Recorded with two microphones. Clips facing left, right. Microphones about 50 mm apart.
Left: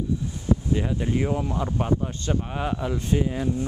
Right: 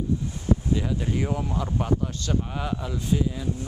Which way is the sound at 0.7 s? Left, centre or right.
Centre.